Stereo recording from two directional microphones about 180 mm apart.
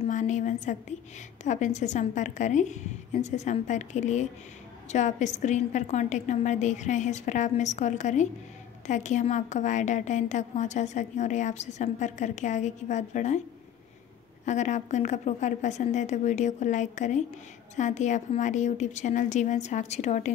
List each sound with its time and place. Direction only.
0.0 s a woman's voice: 40° left (ahead or behind)
14.4 s a woman's voice: 40° left (ahead or behind)